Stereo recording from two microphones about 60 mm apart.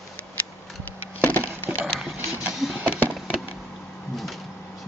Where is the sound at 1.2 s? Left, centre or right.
Left.